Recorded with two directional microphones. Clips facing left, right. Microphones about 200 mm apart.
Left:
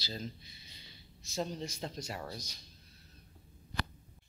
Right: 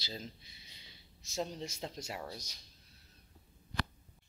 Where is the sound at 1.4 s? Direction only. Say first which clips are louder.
Left 1 dB; 20° right (ahead or behind).